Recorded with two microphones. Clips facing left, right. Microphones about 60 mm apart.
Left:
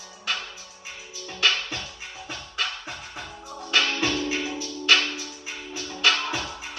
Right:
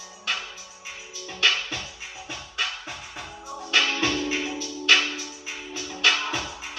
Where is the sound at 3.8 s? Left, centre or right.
Centre.